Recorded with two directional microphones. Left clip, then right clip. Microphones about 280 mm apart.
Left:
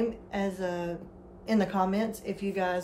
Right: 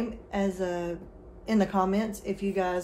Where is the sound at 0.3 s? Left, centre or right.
Centre.